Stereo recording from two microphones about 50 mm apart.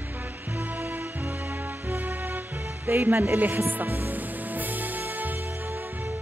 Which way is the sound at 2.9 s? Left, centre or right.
Right.